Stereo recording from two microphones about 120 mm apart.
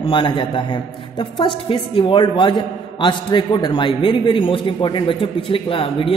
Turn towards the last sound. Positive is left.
turn(degrees=50)  # may be behind; listen again after turning